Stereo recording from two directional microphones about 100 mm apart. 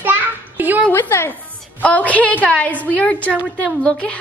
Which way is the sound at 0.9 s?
25° left (ahead or behind).